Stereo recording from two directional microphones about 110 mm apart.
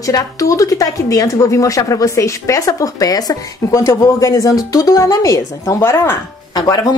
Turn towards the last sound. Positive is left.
turn(degrees=35)  # may be behind; listen again after turning